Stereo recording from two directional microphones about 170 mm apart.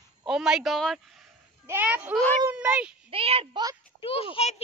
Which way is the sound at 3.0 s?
35° right (ahead or behind).